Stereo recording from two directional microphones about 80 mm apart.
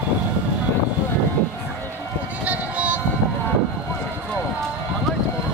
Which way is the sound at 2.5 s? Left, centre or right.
Centre.